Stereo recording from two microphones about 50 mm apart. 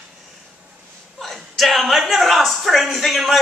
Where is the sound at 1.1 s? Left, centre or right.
Centre.